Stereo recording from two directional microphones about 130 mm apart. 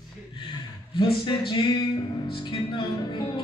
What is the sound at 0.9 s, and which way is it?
Speech, 40° left (ahead or behind).